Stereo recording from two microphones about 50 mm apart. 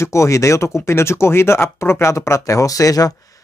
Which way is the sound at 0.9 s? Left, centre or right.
Left.